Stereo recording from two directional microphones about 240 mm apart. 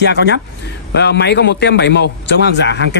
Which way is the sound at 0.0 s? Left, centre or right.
Left.